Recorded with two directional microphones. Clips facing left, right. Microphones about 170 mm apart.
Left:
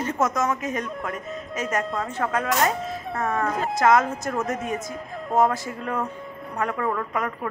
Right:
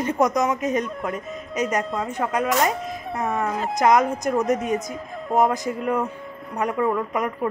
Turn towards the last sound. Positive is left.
turn(degrees=-20)  # may be behind; listen again after turning